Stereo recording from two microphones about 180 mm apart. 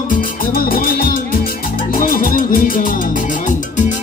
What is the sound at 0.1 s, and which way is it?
Music, 55° left (ahead or behind).